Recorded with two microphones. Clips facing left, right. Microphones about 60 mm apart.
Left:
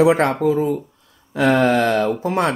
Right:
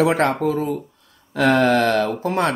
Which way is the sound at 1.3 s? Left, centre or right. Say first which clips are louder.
Left 1 dB; centre.